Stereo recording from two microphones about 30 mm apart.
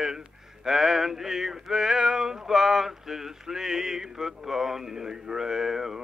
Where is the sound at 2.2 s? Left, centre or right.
Centre.